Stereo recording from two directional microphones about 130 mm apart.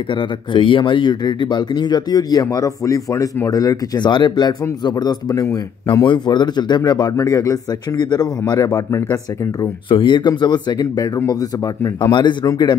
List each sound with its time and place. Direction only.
0.1 s speech: 40° left (ahead or behind)
5.9 s speech: 35° left (ahead or behind)
9.8 s speech: 40° left (ahead or behind)